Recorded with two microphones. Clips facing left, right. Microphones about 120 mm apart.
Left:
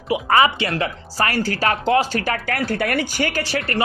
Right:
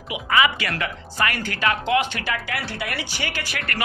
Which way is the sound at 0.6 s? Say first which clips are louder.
Left 5 dB; 30° left (ahead or behind).